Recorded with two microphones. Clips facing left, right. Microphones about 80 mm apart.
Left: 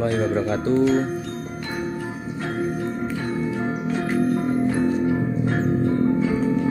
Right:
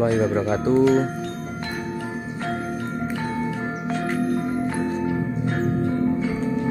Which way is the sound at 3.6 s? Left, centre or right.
Centre.